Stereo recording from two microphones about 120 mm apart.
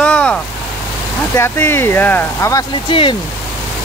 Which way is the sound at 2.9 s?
45° left (ahead or behind).